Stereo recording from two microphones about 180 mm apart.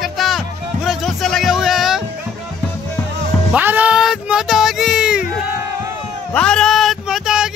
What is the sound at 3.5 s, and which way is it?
Speech, 10° right (ahead or behind).